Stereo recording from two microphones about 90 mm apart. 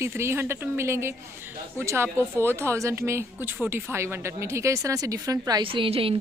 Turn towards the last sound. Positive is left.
turn(degrees=-90)